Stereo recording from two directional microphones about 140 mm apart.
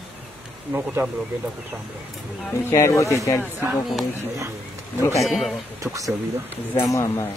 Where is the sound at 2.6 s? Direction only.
20° left (ahead or behind).